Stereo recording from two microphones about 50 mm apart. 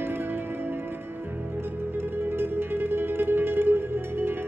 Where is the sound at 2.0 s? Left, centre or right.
Right.